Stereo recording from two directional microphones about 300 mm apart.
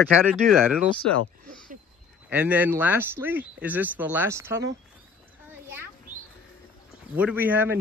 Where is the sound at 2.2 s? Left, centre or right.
Centre.